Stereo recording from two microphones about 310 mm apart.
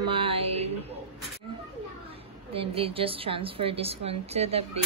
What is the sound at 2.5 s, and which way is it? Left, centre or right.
A woman's voice, centre.